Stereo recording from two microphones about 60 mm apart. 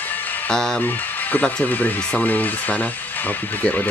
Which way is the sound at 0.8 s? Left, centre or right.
Left.